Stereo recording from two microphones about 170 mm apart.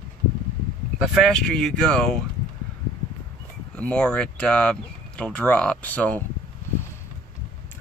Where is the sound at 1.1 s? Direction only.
5° left (ahead or behind).